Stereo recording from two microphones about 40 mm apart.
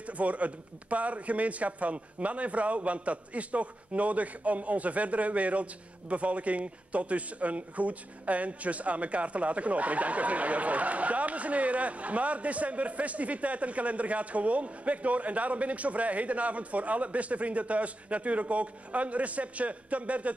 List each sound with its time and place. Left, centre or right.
0.0 s a man's voice: right